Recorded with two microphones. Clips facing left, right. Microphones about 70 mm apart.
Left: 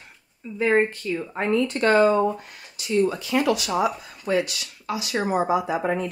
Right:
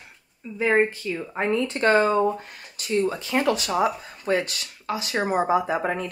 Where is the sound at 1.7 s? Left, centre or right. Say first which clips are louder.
Left 2 dB; right.